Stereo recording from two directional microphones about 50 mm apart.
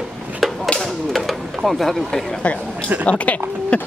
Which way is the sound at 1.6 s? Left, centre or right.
Centre.